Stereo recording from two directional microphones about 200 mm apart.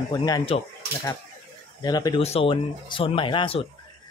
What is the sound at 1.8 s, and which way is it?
Speech, 20° left (ahead or behind).